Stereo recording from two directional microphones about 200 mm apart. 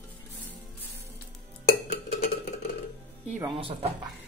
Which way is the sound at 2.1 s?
30° left (ahead or behind).